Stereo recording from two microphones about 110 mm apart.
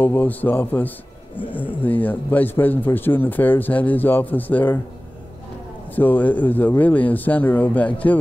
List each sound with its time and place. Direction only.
0.0 s a man's voice: 15° left (ahead or behind)
5.9 s a man's voice: 15° left (ahead or behind)